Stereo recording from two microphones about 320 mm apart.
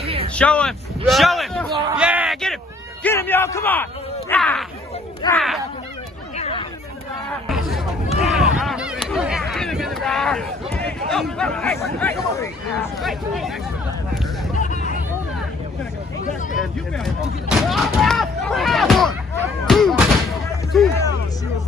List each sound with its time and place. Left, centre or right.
0.0 s vehicle: centre
0.4 s a man's voice: centre
6.3 s hubbub: centre
7.4 s hubbub: centre
8.2 s a sound: centre
14.6 s hubbub: left
16.5 s a sound: centre
19.6 s artillery fire: centre